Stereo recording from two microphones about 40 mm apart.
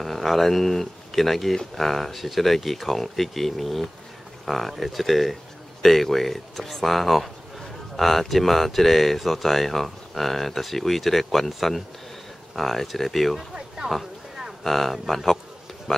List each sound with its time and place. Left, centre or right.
0.0 s speech: centre
13.4 s a sound: centre
14.6 s speech: centre